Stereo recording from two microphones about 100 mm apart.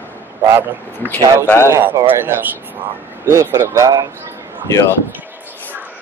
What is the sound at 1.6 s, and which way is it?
Speech, 25° right (ahead or behind).